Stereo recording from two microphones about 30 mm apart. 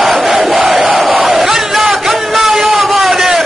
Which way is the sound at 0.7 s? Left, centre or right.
Right.